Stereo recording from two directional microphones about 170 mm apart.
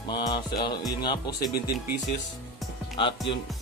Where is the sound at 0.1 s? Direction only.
25° left (ahead or behind).